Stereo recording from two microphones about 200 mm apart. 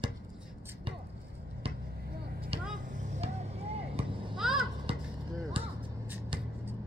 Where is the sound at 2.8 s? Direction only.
40° right (ahead or behind).